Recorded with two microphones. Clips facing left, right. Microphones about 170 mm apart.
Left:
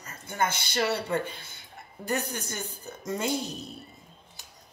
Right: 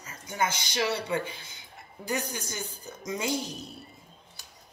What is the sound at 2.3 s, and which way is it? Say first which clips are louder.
Speech: left 1 dB; 55° left (ahead or behind).